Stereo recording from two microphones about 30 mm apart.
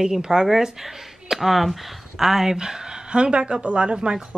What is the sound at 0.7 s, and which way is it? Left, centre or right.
Speech, centre.